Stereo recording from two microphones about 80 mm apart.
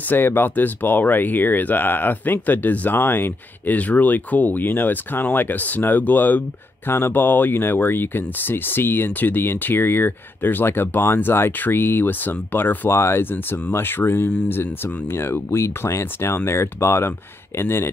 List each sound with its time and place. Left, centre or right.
0.1 s speech: left